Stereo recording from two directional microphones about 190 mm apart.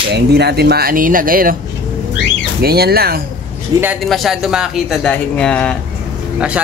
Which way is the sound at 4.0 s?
Centre (ahead or behind).